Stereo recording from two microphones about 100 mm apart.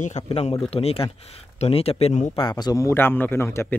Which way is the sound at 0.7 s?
75° left (ahead or behind).